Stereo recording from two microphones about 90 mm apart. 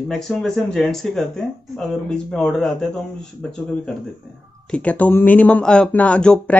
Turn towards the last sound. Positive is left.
turn(degrees=10)  # may be behind; listen again after turning